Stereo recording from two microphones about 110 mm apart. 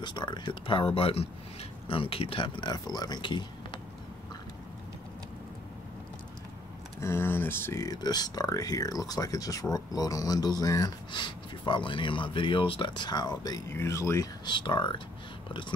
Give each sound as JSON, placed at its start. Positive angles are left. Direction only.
{"t": 0.0, "sound": "speech", "side_deg": 45}
{"t": 7.0, "sound": "speech", "side_deg": 25}
{"t": 7.8, "sound": "speech", "side_deg": 35}
{"t": 11.1, "sound": "speech", "side_deg": 45}
{"t": 13.7, "sound": "speech", "side_deg": 25}
{"t": 14.4, "sound": "speech", "side_deg": 45}